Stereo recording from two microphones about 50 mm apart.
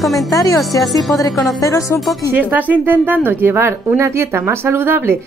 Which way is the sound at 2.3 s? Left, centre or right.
Right.